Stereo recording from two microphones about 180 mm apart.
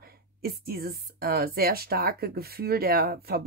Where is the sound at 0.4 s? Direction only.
55° right (ahead or behind).